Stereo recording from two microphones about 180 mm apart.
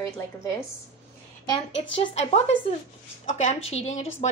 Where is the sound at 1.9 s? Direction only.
30° left (ahead or behind).